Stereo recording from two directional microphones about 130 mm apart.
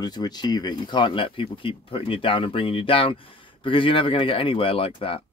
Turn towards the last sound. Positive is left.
turn(degrees=45)  # may be behind; listen again after turning